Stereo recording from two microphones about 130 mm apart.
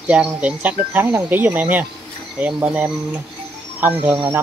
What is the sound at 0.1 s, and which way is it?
Speech, 10° right (ahead or behind).